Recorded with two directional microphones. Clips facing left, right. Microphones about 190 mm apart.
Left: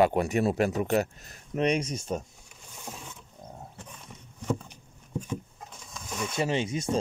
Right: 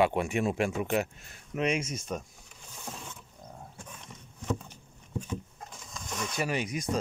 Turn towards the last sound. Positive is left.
turn(degrees=25)  # may be behind; listen again after turning